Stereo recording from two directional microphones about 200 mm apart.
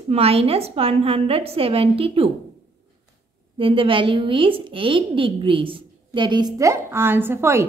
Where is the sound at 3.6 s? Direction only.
25° right (ahead or behind).